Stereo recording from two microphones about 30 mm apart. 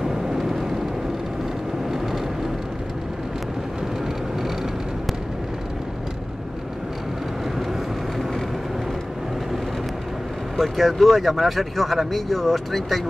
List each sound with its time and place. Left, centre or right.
0.0 s vehicle: centre
10.6 s speech: centre